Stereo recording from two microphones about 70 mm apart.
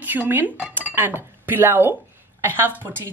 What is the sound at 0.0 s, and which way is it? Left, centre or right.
Speech, right.